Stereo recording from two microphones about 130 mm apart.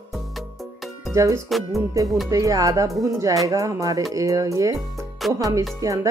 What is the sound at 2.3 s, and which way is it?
Speech, 25° right (ahead or behind).